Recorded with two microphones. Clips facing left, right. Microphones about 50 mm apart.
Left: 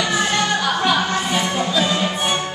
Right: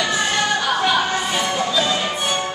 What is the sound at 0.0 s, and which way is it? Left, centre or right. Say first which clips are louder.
Music: left 1 dB; centre.